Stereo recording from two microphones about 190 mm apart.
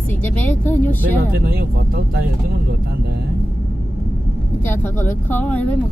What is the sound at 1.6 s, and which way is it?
Speech, 50° right (ahead or behind).